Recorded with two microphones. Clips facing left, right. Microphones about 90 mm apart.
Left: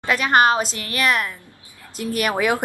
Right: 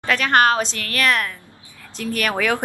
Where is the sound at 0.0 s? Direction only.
10° left (ahead or behind).